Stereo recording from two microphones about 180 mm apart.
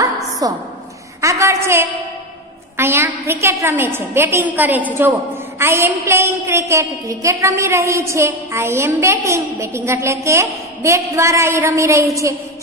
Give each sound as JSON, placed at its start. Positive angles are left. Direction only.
{"t": 0.4, "sound": "a woman's voice", "side_deg": -20}
{"t": 1.2, "sound": "a sound", "side_deg": -15}
{"t": 2.8, "sound": "a woman's voice", "side_deg": -15}